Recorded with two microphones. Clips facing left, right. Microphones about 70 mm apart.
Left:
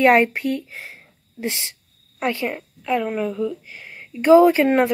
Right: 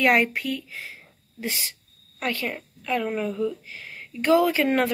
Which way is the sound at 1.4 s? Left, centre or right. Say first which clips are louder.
Left 4 dB; left.